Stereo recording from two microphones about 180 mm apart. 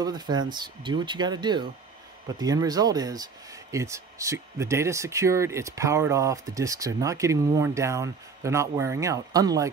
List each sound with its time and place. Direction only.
0.0 s speech: 25° right (ahead or behind)